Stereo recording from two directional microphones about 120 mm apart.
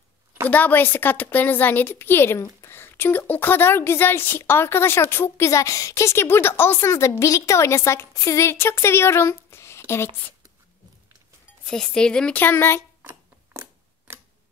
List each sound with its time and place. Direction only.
0.5 s a woman's voice: 15° left (ahead or behind)
11.6 s a woman's voice: 5° left (ahead or behind)
13.0 s a sound: 20° right (ahead or behind)
14.1 s tick: 20° right (ahead or behind)